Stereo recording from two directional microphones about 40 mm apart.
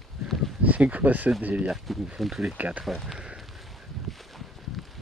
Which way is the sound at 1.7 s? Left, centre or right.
Centre.